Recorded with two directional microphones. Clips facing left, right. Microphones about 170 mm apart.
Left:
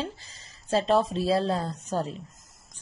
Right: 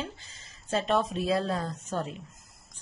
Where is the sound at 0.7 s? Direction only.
30° left (ahead or behind).